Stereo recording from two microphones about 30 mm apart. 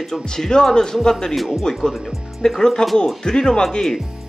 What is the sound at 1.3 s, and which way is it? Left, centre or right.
Speech, centre.